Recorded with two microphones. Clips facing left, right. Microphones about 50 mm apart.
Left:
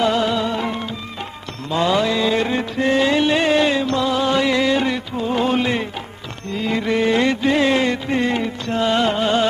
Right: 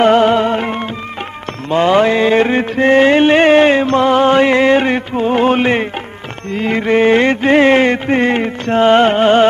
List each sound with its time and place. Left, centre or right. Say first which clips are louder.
0.0 s music: right 8 dB; right